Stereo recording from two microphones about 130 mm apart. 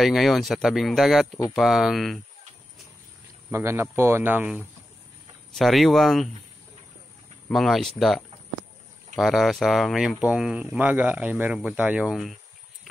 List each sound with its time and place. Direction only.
0.0 s speech: centre (ahead or behind)
3.4 s speech: 20° right (ahead or behind)
5.5 s speech: centre (ahead or behind)
7.4 s speech: centre (ahead or behind)
9.1 s speech: centre (ahead or behind)